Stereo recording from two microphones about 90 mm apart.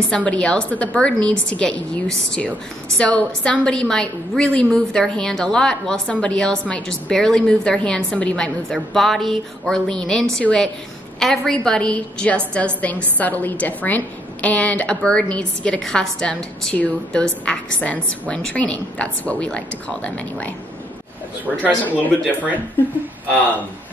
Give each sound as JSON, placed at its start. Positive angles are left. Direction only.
{"t": 0.1, "sound": "a woman's voice", "side_deg": 15}
{"t": 21.5, "sound": "a woman's voice", "side_deg": 0}
{"t": 21.8, "sound": "a woman's voice", "side_deg": 20}